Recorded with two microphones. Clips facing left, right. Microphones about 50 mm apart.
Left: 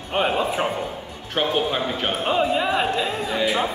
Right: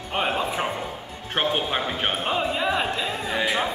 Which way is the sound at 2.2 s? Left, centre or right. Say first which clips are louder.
Left 6 dB; centre.